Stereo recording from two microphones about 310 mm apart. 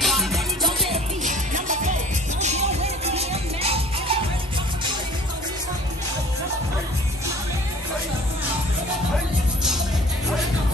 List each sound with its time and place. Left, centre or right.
0.0 s music: centre
0.9 s music: right